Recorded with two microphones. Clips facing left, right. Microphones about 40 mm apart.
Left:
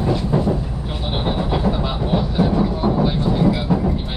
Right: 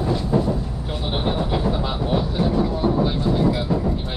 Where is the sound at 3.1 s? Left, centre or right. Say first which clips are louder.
Left 2 dB; centre.